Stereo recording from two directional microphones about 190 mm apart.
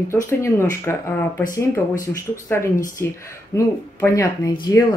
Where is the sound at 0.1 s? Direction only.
15° left (ahead or behind).